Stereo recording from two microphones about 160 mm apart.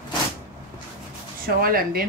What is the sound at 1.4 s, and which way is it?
Speech, 65° right (ahead or behind).